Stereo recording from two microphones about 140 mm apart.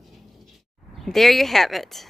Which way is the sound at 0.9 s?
Centre (ahead or behind).